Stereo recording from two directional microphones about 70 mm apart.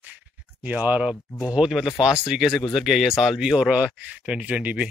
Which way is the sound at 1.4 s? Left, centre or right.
Centre.